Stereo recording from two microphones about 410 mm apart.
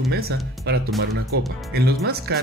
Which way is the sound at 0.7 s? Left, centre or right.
Right.